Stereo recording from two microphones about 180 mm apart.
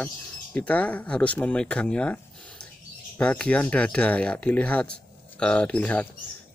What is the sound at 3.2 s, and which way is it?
Speech, 5° left (ahead or behind).